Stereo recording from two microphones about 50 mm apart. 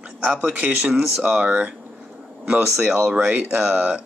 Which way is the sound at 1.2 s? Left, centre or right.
Right.